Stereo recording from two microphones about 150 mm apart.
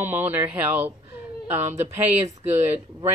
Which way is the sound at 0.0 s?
10° right (ahead or behind).